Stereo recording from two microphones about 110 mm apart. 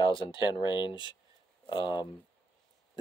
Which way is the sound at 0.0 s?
50° left (ahead or behind).